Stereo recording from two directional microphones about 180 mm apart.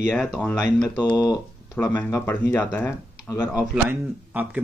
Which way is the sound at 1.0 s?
20° left (ahead or behind).